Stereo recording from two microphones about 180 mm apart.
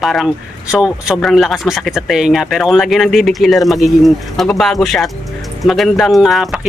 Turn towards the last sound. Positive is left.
turn(degrees=0)  # may be behind; listen again after turning